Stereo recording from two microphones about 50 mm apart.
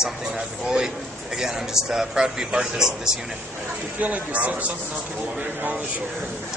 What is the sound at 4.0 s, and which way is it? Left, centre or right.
A man's voice, right.